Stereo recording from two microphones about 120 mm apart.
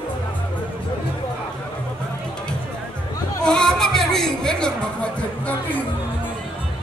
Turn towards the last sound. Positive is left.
turn(degrees=10)  # may be behind; listen again after turning